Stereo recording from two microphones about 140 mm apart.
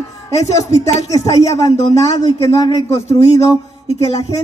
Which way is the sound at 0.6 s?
20° left (ahead or behind).